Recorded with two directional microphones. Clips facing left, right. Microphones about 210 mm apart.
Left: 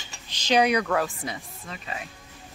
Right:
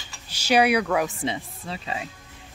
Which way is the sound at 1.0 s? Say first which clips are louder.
Right 6 dB; 25° right (ahead or behind).